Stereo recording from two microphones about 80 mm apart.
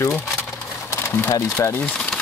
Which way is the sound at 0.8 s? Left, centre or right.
Left.